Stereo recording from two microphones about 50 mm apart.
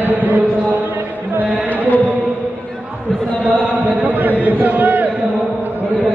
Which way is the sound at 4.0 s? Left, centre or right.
Right.